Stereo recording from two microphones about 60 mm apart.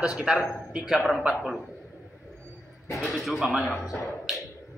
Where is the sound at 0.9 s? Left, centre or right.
Centre.